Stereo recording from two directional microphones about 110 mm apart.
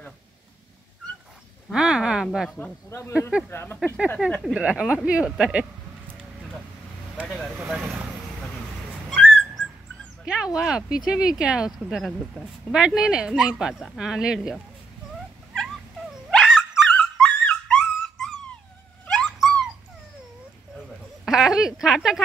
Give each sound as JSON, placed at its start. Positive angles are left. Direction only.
{"t": 1.7, "sound": "speech", "side_deg": -5}
{"t": 2.6, "sound": "speech", "side_deg": 25}
{"t": 3.2, "sound": "speech", "side_deg": -10}
{"t": 3.4, "sound": "speech", "side_deg": 20}
{"t": 4.4, "sound": "speech", "side_deg": -10}
{"t": 7.2, "sound": "vehicle", "side_deg": 5}
{"t": 7.5, "sound": "vehicle", "side_deg": -10}
{"t": 9.1, "sound": "whistling", "side_deg": 5}
{"t": 10.2, "sound": "speech", "side_deg": -5}
{"t": 15.5, "sound": "cat", "side_deg": 5}
{"t": 16.9, "sound": "dog", "side_deg": 5}
{"t": 21.3, "sound": "speech", "side_deg": -5}